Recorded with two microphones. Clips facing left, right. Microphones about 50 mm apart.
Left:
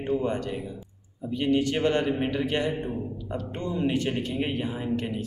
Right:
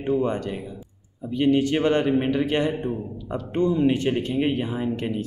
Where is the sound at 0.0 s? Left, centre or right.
Right.